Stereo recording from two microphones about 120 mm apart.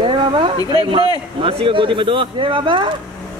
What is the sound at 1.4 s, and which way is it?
Speech, 50° right (ahead or behind).